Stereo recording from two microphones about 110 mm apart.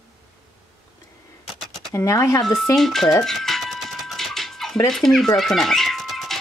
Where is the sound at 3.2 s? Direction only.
Centre (ahead or behind).